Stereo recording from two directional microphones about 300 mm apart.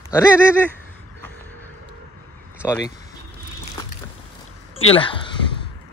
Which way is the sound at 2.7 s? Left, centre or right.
Centre.